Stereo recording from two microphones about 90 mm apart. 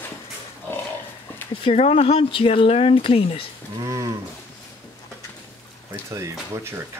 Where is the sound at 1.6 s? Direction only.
80° left.